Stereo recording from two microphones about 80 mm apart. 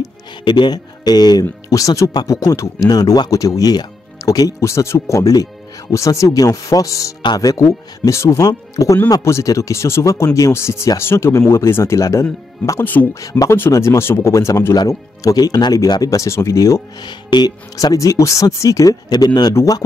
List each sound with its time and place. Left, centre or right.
0.0 s music: left
1.7 s speech: left
4.6 s speech: left
12.8 s speech: left
13.1 s speech: left
13.5 s speech: left
14.9 s speech: left
17.0 s speech: left
17.7 s speech: left